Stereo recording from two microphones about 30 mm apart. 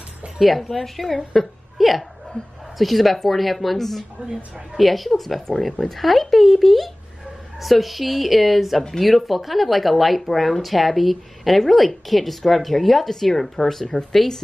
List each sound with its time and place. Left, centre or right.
0.4 s a woman's voice: centre
2.3 s speech: left
2.8 s speech: centre
5.6 s speech: centre
5.9 s speech: centre